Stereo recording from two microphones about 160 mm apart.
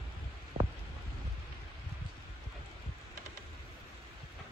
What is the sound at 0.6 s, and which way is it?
Rain, 45° right (ahead or behind).